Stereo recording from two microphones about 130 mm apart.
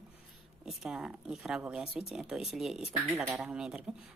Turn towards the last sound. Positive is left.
turn(degrees=-5)  # may be behind; listen again after turning